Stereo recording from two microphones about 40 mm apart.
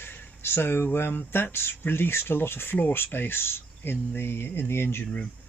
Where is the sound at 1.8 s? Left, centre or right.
Left.